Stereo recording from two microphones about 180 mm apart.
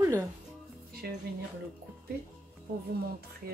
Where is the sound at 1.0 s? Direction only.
60° right (ahead or behind).